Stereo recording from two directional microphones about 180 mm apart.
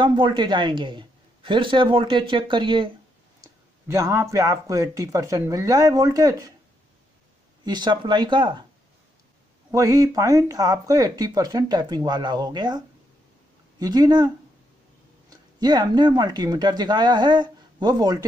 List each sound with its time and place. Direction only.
0.0 s speech: 25° right (ahead or behind)
3.3 s speech: 15° right (ahead or behind)
7.6 s speech: 25° right (ahead or behind)
9.7 s speech: 20° right (ahead or behind)